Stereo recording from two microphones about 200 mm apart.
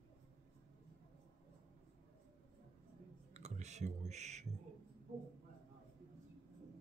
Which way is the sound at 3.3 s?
35° right (ahead or behind).